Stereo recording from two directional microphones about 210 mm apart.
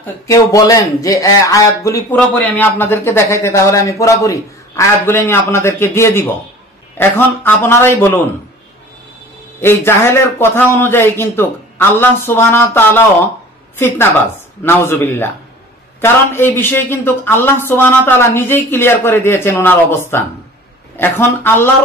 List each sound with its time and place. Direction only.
0.0 s speech: 15° left (ahead or behind)
9.6 s speech: 10° left (ahead or behind)